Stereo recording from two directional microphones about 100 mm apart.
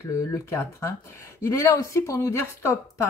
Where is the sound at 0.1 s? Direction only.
30° left (ahead or behind).